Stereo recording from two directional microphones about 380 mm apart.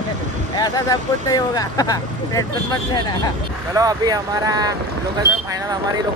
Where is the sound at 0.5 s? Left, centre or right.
Centre.